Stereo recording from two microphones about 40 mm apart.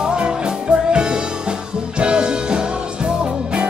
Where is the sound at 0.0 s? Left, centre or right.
Right.